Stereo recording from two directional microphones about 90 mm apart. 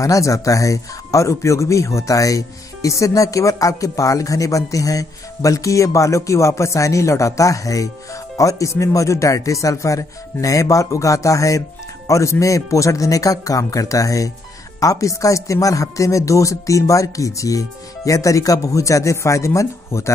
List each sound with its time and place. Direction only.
0.0 s speech: 40° left (ahead or behind)